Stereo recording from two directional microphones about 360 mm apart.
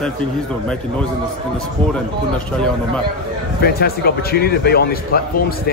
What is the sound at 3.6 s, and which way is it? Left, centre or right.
A man's voice, left.